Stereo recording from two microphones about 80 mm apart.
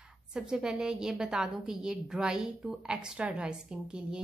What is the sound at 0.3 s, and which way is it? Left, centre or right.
Speech, centre.